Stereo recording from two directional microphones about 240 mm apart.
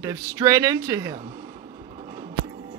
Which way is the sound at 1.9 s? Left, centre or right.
Right.